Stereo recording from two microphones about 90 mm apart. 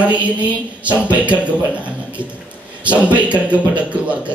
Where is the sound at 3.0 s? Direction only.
15° right (ahead or behind).